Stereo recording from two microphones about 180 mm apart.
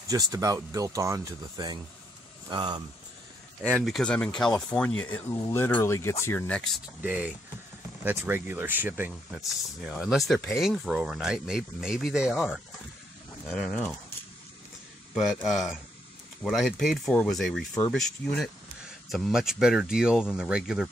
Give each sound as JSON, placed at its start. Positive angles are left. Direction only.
{"t": 0.1, "sound": "speech", "side_deg": -20}
{"t": 3.8, "sound": "speech", "side_deg": 5}
{"t": 7.0, "sound": "speech", "side_deg": -10}
{"t": 15.4, "sound": "speech", "side_deg": 0}